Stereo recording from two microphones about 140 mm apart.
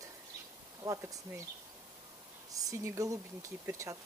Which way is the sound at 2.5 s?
25° right (ahead or behind).